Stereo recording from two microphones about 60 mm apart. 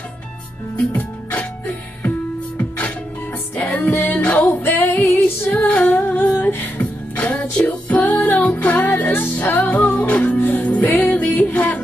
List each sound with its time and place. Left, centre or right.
0.7 s music: left
4.5 s female singing: left
5.7 s humming: left
6.8 s music: left
10.3 s music: left
10.6 s music: centre
10.9 s music: left
11.5 s a sound: left